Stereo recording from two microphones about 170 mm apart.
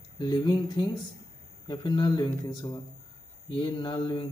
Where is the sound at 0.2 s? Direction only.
25° left (ahead or behind).